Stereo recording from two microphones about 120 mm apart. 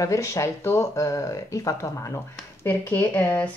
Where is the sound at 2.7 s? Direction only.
15° left (ahead or behind).